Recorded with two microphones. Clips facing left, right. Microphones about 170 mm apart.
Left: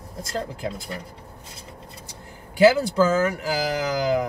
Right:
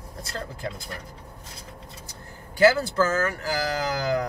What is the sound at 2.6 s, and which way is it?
Speech, 15° left (ahead or behind).